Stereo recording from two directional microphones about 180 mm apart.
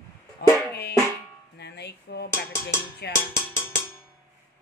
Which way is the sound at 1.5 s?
70° left (ahead or behind).